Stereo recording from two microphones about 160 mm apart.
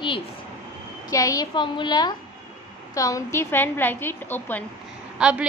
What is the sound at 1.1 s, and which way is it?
A woman's voice, 20° left (ahead or behind).